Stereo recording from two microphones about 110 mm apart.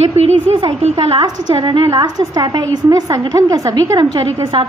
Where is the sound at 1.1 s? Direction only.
45° right (ahead or behind).